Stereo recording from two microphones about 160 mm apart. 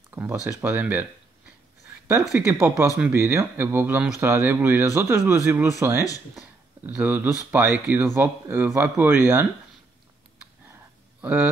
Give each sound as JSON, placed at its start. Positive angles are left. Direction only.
{"t": 0.1, "sound": "speech", "side_deg": -15}
{"t": 2.6, "sound": "speech", "side_deg": -20}
{"t": 10.7, "sound": "a sound", "side_deg": -10}